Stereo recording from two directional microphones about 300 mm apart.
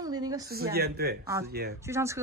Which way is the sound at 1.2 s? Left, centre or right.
Centre.